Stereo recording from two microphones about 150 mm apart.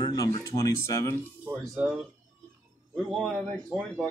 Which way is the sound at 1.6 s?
5° right (ahead or behind).